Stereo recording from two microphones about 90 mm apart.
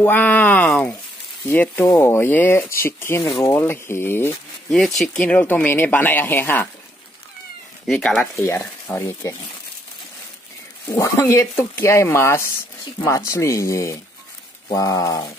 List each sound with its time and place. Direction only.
0.0 s speech: 20° left (ahead or behind)
3.2 s speech: centre (ahead or behind)
3.4 s speech: 25° left (ahead or behind)
4.6 s speech: 5° left (ahead or behind); by 6.7 s 25° left (ahead or behind)
7.8 s speech: centre (ahead or behind)
8.2 s speech: 30° left (ahead or behind)
10.9 s speech: 35° left (ahead or behind)